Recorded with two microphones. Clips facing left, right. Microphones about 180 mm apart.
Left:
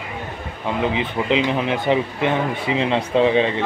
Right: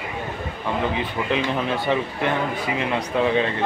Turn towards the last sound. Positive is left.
turn(degrees=25)  # may be behind; listen again after turning